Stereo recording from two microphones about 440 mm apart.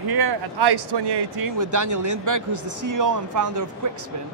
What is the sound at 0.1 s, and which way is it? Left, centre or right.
Speech, right.